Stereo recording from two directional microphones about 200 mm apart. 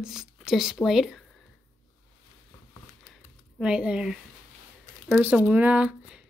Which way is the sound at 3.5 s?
5° right (ahead or behind).